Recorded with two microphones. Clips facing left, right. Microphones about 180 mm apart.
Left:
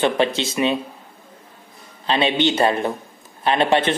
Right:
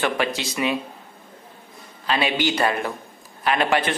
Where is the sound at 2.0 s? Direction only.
25° left (ahead or behind).